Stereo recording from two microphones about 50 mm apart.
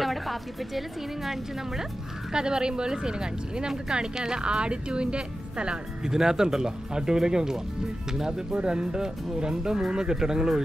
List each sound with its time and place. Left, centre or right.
0.0 s a woman's voice: centre
2.3 s speech: centre